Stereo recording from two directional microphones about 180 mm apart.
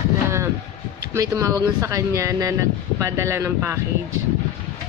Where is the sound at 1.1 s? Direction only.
15° right (ahead or behind).